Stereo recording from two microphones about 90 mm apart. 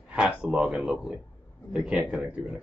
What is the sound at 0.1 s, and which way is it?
A man's voice, 10° right (ahead or behind).